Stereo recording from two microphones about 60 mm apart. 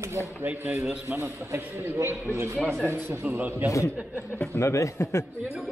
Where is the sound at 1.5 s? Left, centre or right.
Right.